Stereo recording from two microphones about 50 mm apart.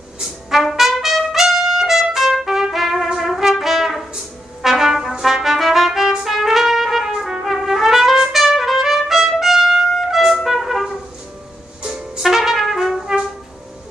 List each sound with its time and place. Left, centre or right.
0.2 s trumpet: centre
11.8 s music: centre
12.2 s trumpet: centre